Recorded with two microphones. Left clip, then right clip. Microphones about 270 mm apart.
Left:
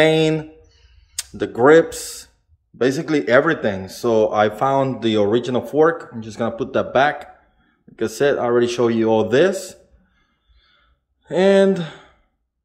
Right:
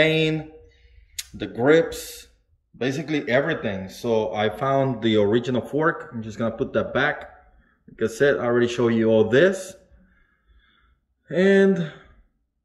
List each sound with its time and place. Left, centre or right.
0.0 s a sound: centre
1.4 s speech: centre
11.2 s speech: centre